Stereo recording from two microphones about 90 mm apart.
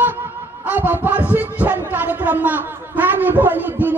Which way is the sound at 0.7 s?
20° right (ahead or behind).